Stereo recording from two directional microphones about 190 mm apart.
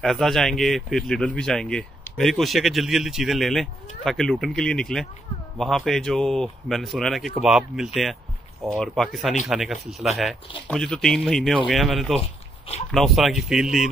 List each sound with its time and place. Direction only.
0.0 s speech: centre (ahead or behind)
12.2 s a sound: 35° left (ahead or behind)
12.9 s speech: centre (ahead or behind)